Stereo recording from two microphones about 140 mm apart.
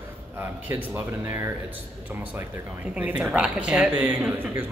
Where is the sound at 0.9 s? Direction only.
15° right (ahead or behind).